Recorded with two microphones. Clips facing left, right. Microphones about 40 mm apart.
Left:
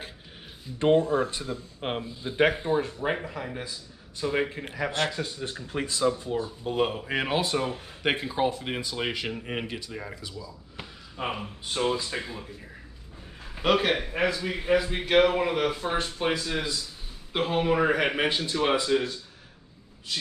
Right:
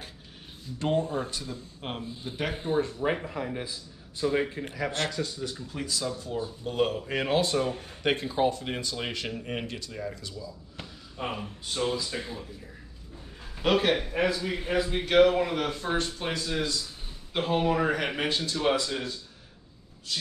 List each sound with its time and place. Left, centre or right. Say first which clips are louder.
0.7 s speech: left 6 dB; left
1.0 s speech: left 6 dB; left
1.3 s speech: left 3 dB; left
2.5 s speech: left 2 dB; left
2.8 s speech: right 1 dB; centre
3.3 s a man's voice: right 2 dB; centre
4.3 s speech: left 1 dB; centre
5.4 s speech: left 3 dB; left
6.3 s speech: left 2 dB; centre
10.3 s speech: even; centre
11.1 s speech: left 2 dB; left
13.6 s speech: left 1 dB; centre